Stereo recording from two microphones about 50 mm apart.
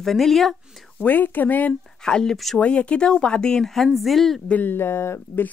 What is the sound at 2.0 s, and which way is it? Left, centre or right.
Speech, centre.